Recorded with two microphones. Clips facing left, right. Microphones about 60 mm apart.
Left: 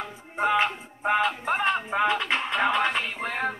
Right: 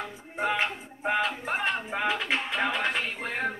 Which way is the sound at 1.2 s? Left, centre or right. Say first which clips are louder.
Left 4 dB; left.